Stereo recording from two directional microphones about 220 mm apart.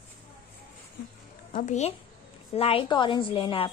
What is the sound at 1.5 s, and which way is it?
A woman's voice, 35° left (ahead or behind).